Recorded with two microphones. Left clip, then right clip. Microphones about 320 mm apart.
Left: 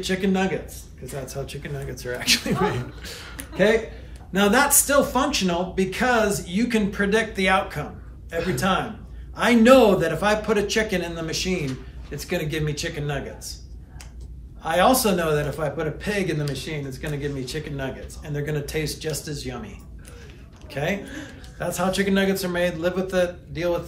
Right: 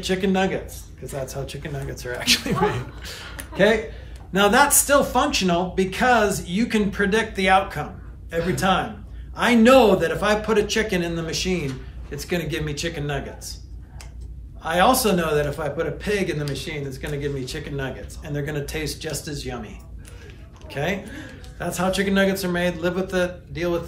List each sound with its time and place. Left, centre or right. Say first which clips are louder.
0.0 s a man's voice: right 2 dB; centre
14.6 s a man's voice: right 1 dB; centre